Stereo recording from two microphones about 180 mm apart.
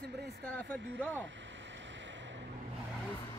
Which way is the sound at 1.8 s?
90° right.